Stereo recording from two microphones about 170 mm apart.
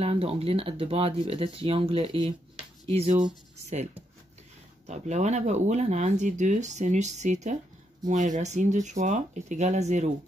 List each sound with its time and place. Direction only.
0.0 s speech: 35° right (ahead or behind)
4.8 s speech: 40° right (ahead or behind)